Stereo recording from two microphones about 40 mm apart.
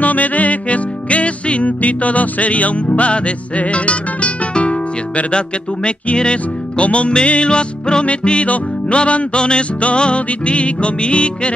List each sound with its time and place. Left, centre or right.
0.0 s music: left